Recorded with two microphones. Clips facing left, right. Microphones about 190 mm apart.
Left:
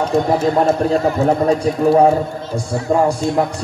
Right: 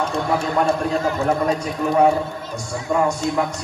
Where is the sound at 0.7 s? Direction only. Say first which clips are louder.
Left 5 dB; 30° left (ahead or behind).